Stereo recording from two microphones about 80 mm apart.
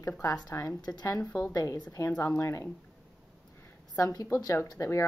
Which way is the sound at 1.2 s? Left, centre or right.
Left.